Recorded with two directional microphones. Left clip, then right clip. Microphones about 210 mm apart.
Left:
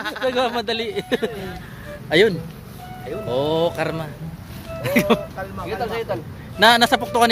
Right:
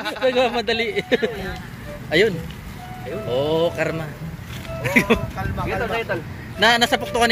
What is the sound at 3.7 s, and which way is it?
A man's voice, 15° left (ahead or behind).